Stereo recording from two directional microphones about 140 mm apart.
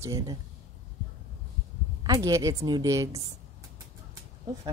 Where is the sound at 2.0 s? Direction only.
25° right (ahead or behind).